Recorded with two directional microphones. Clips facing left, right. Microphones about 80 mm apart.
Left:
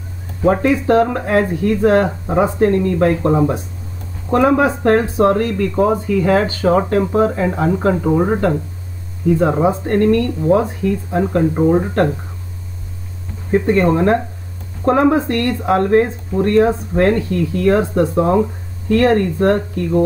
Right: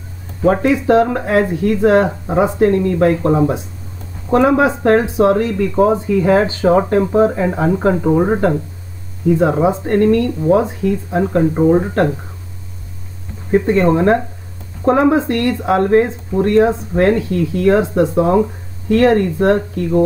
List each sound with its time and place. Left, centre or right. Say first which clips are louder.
0.5 s speech: right 1 dB; centre
7.9 s speech: right 1 dB; centre
11.1 s speech: right 1 dB; centre
13.5 s speech: right 1 dB; centre
15.1 s speech: right 1 dB; centre
15.6 s speech: right 1 dB; centre
18.9 s speech: right 1 dB; centre